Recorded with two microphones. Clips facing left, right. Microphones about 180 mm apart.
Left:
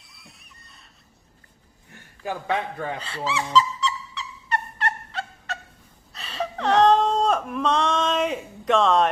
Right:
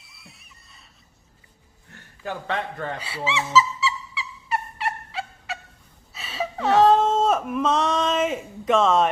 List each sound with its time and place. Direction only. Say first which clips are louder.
0.0 s screaming: even; centre (ahead or behind)
1.9 s a man's voice: left 1 dB; 10° left (ahead or behind)
3.0 s a sound: even; 10° right (ahead or behind)